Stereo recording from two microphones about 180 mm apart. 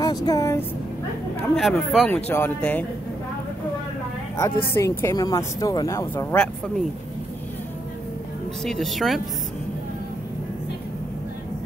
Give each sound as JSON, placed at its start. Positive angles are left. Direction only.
{"t": 0.0, "sound": "speech", "side_deg": 20}
{"t": 1.6, "sound": "speech", "side_deg": 0}
{"t": 2.1, "sound": "speech", "side_deg": 10}
{"t": 4.7, "sound": "speech", "side_deg": 15}
{"t": 6.3, "sound": "speech", "side_deg": 5}
{"t": 8.6, "sound": "speech", "side_deg": 0}